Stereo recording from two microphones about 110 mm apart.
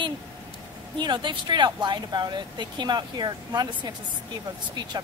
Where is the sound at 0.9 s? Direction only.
45° right (ahead or behind).